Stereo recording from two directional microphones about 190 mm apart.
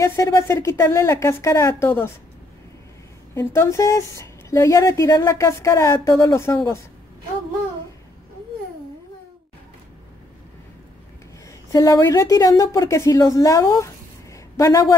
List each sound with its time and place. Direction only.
0.0 s speech: 15° left (ahead or behind)
3.3 s speech: 15° left (ahead or behind)
11.7 s a woman's voice: 20° left (ahead or behind)